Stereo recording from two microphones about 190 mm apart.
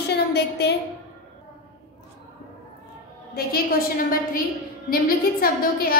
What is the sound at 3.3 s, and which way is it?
Speech, 55° left (ahead or behind).